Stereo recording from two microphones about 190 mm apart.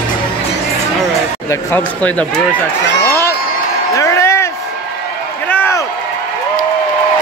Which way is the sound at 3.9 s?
15° left (ahead or behind).